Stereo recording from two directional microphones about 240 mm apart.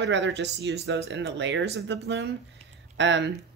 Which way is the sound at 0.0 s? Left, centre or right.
Right.